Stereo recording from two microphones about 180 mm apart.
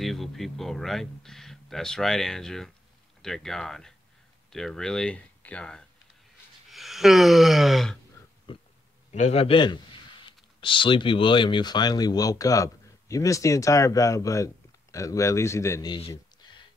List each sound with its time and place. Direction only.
0.0 s speech: centre (ahead or behind)
6.7 s a sound: centre (ahead or behind)
8.5 s a man's voice: 30° left (ahead or behind)